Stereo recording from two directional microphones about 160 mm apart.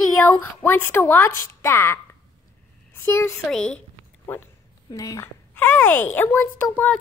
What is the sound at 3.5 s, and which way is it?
Speech, 5° left (ahead or behind).